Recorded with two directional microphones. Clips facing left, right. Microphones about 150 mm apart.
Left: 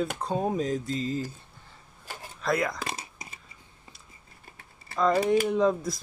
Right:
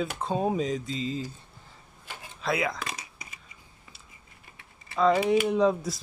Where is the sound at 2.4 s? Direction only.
5° right (ahead or behind).